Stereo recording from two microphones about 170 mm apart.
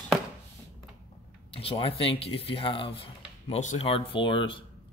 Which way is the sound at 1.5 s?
35° left (ahead or behind).